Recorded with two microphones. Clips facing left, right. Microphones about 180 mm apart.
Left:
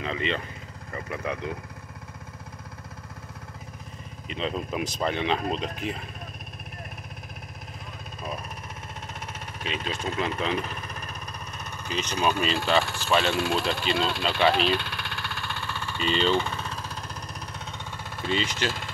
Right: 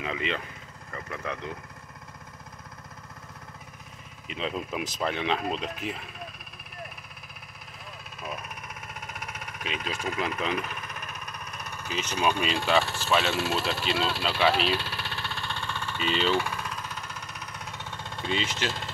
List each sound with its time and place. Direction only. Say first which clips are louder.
0.0 s speech: left 2 dB; 5° right (ahead or behind)
0.9 s speech: left 3 dB; 10° left (ahead or behind)
4.3 s speech: left 2 dB; 5° right (ahead or behind)
9.0 s a sound: even; 25° left (ahead or behind)
10.5 s engine: left 2 dB; 30° left (ahead or behind)
11.5 s vehicle: left 2 dB; centre (ahead or behind)
12.4 s speech: left 1 dB; centre (ahead or behind)
16.0 s speech: left 2 dB; 5° right (ahead or behind)
16.3 s vehicle: left 1 dB; 25° left (ahead or behind)
17.7 s a sound: left 1 dB; 10° left (ahead or behind)